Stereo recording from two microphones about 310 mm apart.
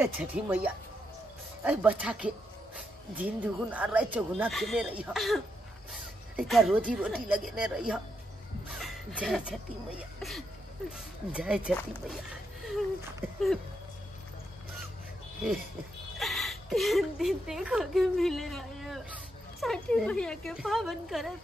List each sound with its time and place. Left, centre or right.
0.0 s speech: centre
16.2 s a woman's voice: centre